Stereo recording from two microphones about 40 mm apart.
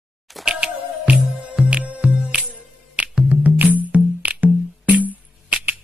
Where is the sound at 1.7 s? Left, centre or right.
Right.